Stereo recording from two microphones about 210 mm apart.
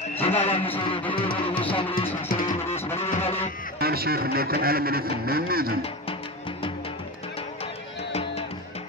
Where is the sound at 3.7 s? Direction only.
45° right (ahead or behind).